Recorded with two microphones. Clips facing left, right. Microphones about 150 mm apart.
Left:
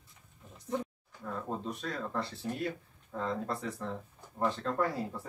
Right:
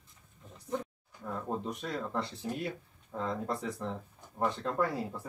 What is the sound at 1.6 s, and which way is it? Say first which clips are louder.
Speech: right 1 dB; 15° right (ahead or behind).